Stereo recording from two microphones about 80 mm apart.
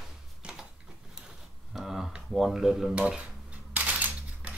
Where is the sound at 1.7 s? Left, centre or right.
Centre.